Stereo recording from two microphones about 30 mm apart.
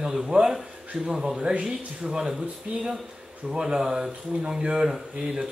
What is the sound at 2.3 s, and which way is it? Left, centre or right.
Speech, right.